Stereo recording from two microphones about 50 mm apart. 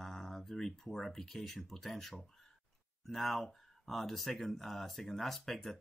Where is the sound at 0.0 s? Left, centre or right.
Centre.